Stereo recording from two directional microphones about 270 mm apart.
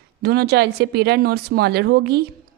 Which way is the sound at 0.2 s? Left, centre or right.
Right.